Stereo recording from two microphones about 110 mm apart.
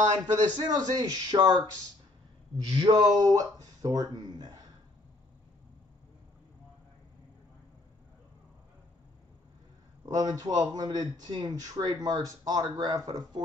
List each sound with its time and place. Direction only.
0.6 s speech: 40° right (ahead or behind)
2.6 s speech: 45° right (ahead or behind)
10.0 s speech: 35° right (ahead or behind)